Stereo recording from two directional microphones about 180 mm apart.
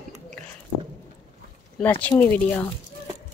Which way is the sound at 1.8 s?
10° left (ahead or behind).